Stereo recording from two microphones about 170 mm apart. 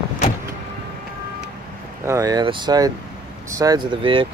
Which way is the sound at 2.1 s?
20° right (ahead or behind).